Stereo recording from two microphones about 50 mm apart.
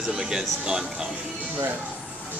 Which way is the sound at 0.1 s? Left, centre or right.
Centre.